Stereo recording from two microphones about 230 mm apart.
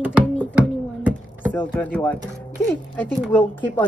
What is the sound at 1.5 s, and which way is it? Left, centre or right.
A woman's voice, centre.